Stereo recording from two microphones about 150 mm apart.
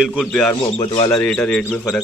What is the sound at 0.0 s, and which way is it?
Speech, 5° right (ahead or behind).